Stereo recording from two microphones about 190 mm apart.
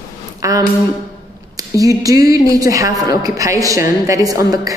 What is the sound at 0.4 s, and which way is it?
A woman's voice, 20° right (ahead or behind).